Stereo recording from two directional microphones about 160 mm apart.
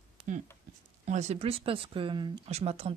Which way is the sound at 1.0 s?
45° right (ahead or behind).